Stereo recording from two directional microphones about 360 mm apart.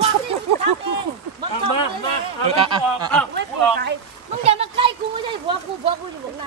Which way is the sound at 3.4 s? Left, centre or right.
Right.